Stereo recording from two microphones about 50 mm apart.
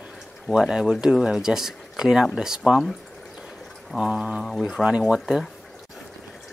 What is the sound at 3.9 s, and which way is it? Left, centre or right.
Speech, centre.